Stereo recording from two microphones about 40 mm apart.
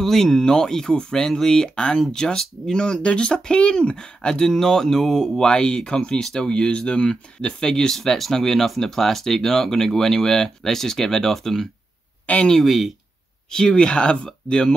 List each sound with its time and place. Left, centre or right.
0.0 s speech: centre
7.9 s speech: centre
12.3 s speech: left
12.6 s speech: centre
13.5 s speech: left